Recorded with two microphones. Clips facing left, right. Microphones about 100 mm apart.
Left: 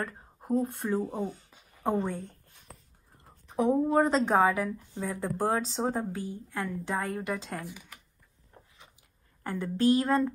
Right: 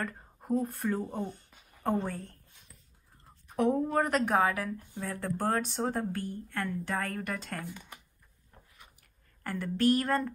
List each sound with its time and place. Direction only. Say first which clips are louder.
0.0 s a sound: left 1 dB; 5° left (ahead or behind)
0.6 s speech: left 3 dB; centre (ahead or behind)
3.6 s speech: left 2 dB; 5° left (ahead or behind)
3.9 s a woman's voice: left 3 dB; 25° left (ahead or behind); by 7.9 s 5° left (ahead or behind)
9.4 s a woman's voice: left 1 dB; 20° left (ahead or behind)